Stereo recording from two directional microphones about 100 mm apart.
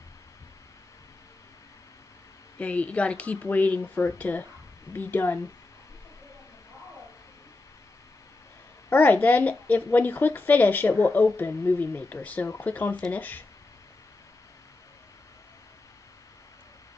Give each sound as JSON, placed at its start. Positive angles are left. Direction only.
{"t": 2.6, "sound": "a woman's voice", "side_deg": 15}
{"t": 8.9, "sound": "a woman's voice", "side_deg": 15}